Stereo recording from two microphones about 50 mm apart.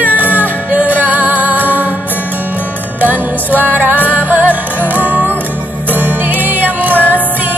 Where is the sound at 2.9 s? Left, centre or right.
Right.